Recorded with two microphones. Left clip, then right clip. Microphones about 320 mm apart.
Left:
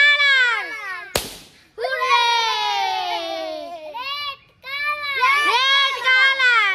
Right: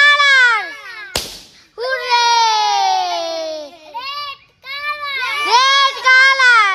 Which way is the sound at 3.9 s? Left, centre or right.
Centre.